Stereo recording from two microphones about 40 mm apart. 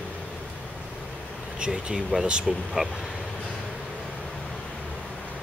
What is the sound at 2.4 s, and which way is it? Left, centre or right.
Speech, centre.